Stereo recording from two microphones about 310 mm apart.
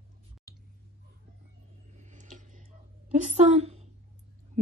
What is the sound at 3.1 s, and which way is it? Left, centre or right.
Speech, right.